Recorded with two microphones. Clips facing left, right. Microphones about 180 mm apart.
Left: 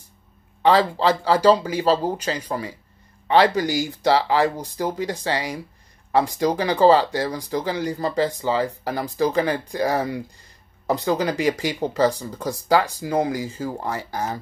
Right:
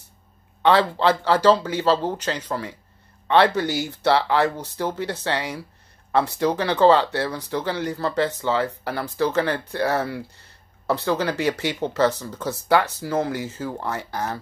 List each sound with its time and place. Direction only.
0.6 s speech: 10° left (ahead or behind)
3.7 s speech: 65° right (ahead or behind)
4.0 s speech: 10° left (ahead or behind)